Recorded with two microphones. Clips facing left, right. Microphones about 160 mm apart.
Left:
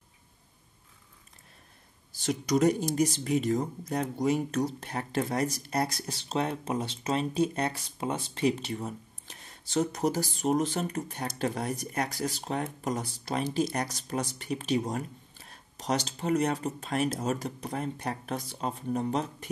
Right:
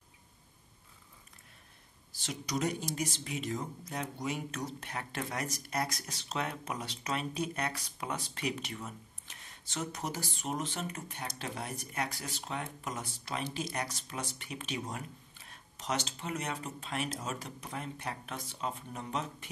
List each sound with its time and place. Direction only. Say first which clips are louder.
2.1 s speech: left 10 dB; 45° left (ahead or behind)